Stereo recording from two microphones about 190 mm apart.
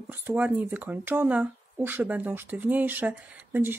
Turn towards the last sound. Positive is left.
turn(degrees=-10)  # may be behind; listen again after turning